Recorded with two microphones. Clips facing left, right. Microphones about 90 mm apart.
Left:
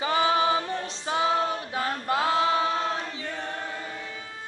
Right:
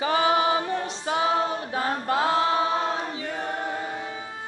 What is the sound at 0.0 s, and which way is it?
A capella, 25° right (ahead or behind).